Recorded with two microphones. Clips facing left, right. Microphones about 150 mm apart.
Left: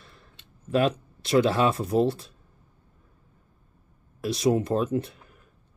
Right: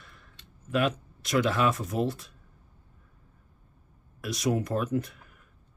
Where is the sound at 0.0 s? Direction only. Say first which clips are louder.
Left 1 dB; 30° left (ahead or behind).